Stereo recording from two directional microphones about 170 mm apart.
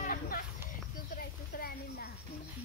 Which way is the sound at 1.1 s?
65° left (ahead or behind).